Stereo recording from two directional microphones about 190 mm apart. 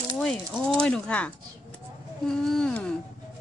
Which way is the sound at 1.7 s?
5° left (ahead or behind).